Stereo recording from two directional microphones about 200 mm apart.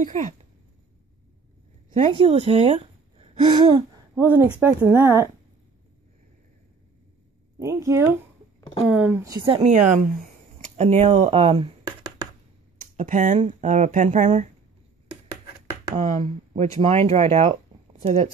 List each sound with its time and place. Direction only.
0.0 s speech: 40° right (ahead or behind)
2.0 s speech: 30° right (ahead or behind)
4.2 s speech: 10° right (ahead or behind)
7.5 s speech: 15° right (ahead or behind)
9.6 s speech: 35° right (ahead or behind)
12.9 s speech: 40° right (ahead or behind)
16.0 s speech: 35° right (ahead or behind)